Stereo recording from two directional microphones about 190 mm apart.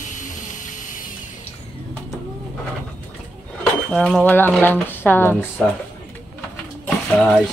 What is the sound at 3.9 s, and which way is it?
Speech, centre (ahead or behind).